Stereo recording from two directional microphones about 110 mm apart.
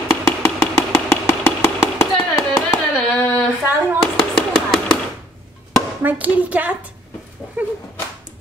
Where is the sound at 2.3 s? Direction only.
25° left (ahead or behind).